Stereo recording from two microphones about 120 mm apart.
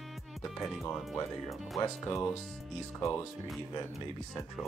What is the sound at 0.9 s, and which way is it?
Speech, 5° left (ahead or behind).